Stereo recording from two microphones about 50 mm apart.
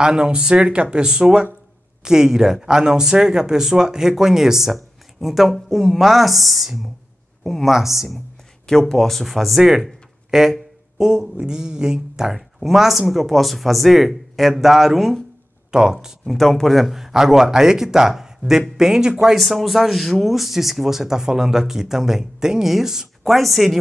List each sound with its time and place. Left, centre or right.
0.0 s speech: centre
8.6 s speech: centre
16.3 s speech: centre